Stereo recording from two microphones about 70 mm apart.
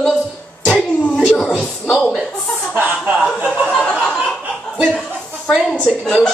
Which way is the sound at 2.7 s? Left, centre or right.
Right.